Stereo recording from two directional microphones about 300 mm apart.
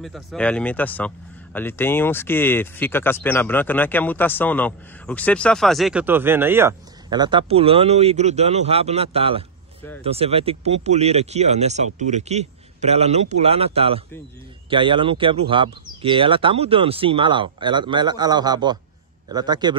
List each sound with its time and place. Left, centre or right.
0.0 s speech: centre